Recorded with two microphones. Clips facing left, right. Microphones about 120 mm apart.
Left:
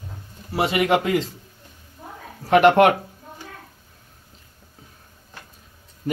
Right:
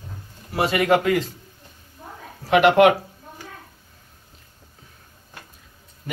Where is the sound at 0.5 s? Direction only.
25° left (ahead or behind).